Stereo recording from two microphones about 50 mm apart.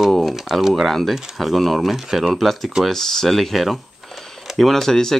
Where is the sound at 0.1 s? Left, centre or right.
Centre.